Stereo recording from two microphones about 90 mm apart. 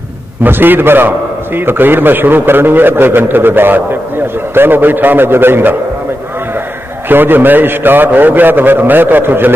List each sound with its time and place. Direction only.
0.4 s a man's voice: 20° right (ahead or behind)
7.1 s a man's voice: 25° right (ahead or behind)